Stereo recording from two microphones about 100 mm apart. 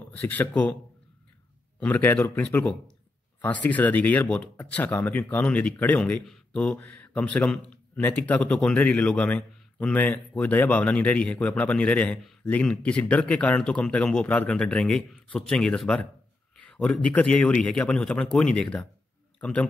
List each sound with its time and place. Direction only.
0.1 s speech: 15° left (ahead or behind)
1.8 s speech: 20° left (ahead or behind)